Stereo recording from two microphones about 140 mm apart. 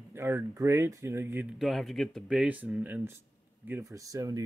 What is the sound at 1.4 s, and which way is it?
Speech, centre (ahead or behind).